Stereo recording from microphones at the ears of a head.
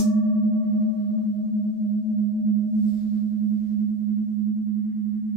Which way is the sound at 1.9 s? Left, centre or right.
Right.